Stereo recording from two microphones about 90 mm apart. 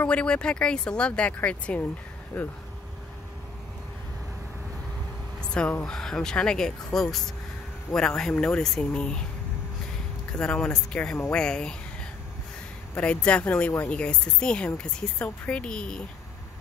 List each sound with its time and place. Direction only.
0.0 s speech: 15° left (ahead or behind)
5.4 s speech: 10° left (ahead or behind)
10.3 s speech: 10° left (ahead or behind)
12.9 s speech: 15° left (ahead or behind)